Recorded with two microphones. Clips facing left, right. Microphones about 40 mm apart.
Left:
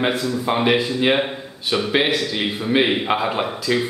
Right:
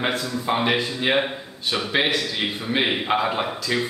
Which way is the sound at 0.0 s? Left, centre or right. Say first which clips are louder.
Left 4 dB; centre.